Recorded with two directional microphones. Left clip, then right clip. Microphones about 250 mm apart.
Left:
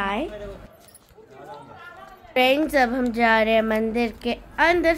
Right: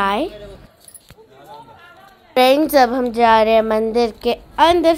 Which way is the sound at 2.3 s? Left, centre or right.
Centre.